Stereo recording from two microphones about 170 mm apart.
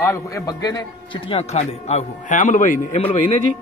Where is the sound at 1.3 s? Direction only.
40° left (ahead or behind).